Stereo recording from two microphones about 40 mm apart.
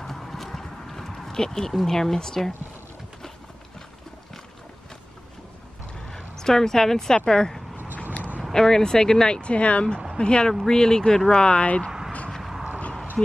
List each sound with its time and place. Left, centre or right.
0.0 s clip-clop: centre
1.9 s speech: centre
6.0 s a woman's voice: centre
9.4 s speech: left